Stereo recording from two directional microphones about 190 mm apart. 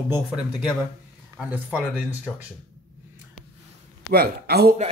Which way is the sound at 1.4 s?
10° right (ahead or behind).